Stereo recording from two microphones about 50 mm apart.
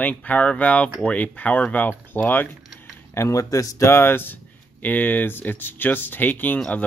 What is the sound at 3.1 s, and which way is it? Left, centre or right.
Speech, left.